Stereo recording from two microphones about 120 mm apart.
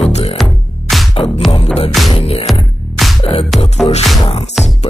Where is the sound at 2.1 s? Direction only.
55° left (ahead or behind).